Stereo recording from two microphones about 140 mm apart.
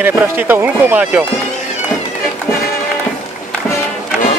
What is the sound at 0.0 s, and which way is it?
Speech, 15° right (ahead or behind).